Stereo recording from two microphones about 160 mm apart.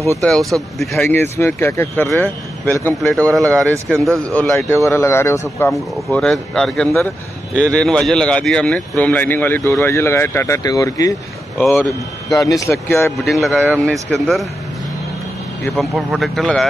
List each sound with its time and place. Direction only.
0.2 s speech: centre (ahead or behind)
1.4 s speech: 15° left (ahead or behind)
3.2 s speech: 20° right (ahead or behind)
4.2 s speech: 10° left (ahead or behind)
5.7 s speech: centre (ahead or behind); by 11.6 s 20° left (ahead or behind)
11.6 s speech: centre (ahead or behind)
12.4 s speech: 20° left (ahead or behind)
13.2 s speech: centre (ahead or behind)
15.7 s speech: centre (ahead or behind)